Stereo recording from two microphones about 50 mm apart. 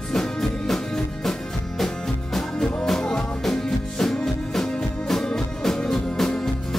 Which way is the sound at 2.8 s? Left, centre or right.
Centre.